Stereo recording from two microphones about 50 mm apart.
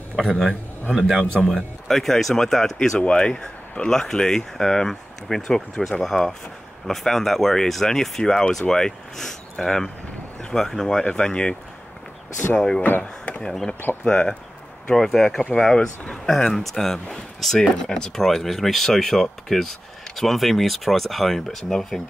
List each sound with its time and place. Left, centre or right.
0.2 s speech: centre
12.5 s speech: centre
12.8 s speech: left
13.4 s speech: centre
14.0 s speech: left
14.9 s speech: centre